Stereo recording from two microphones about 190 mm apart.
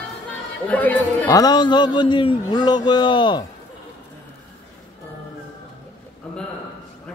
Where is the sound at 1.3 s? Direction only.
20° left (ahead or behind).